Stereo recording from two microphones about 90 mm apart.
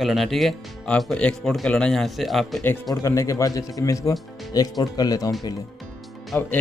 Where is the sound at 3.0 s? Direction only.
35° left (ahead or behind).